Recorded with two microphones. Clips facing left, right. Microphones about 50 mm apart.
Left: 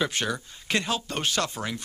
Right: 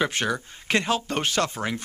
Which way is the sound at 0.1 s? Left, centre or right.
Right.